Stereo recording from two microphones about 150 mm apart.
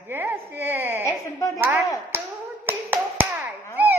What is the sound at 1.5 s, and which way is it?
Speech, 15° right (ahead or behind).